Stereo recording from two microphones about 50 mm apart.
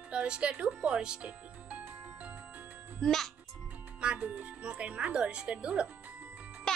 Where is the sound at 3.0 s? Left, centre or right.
Centre.